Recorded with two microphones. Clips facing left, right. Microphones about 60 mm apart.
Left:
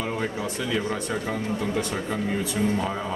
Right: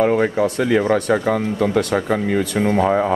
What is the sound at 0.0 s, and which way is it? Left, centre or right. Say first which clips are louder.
Speech: right 12 dB; right.